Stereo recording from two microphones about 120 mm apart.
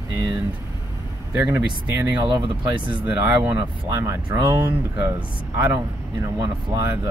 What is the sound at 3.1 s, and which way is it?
Speech, 15° right (ahead or behind).